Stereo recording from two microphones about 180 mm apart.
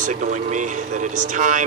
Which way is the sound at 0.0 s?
45° right (ahead or behind).